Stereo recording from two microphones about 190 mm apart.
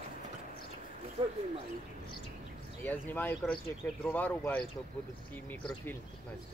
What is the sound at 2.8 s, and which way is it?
Speech, 10° left (ahead or behind).